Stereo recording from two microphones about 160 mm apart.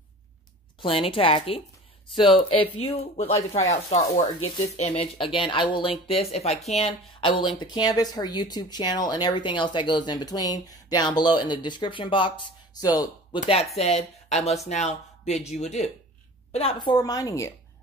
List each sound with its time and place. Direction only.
0.7 s speech: 35° left (ahead or behind)
13.4 s speech: 40° left (ahead or behind)
16.5 s speech: 35° left (ahead or behind)